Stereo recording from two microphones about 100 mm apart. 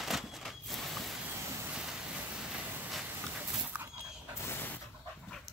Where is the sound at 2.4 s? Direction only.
10° right (ahead or behind).